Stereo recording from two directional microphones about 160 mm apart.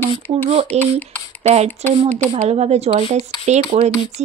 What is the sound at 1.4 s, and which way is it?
Speech, 45° right (ahead or behind).